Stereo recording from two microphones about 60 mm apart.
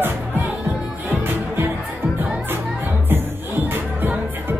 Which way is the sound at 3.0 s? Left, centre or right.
Right.